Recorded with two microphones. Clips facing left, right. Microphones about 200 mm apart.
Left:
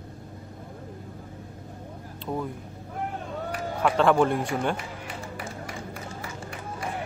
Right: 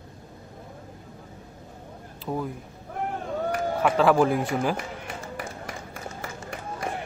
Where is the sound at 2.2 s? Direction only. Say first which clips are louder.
Right 1 dB; 5° right (ahead or behind).